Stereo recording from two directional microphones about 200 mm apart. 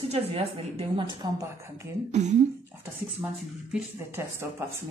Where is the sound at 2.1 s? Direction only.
35° right (ahead or behind).